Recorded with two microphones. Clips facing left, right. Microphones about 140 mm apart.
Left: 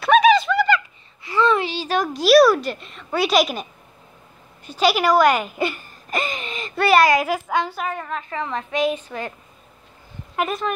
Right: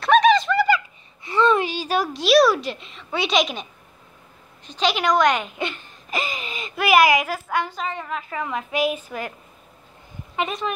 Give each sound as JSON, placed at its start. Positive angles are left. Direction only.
{"t": 0.0, "sound": "a sound", "side_deg": 5}
{"t": 0.7, "sound": "fowl", "side_deg": -25}
{"t": 2.1, "sound": "a child's voice", "side_deg": 0}
{"t": 4.6, "sound": "speech", "side_deg": 5}
{"t": 7.2, "sound": "a woman's voice", "side_deg": 15}
{"t": 8.1, "sound": "a woman's voice", "side_deg": -5}
{"t": 10.3, "sound": "speech", "side_deg": 0}